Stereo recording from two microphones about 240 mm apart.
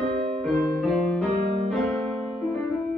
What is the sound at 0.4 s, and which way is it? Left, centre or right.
Music, centre.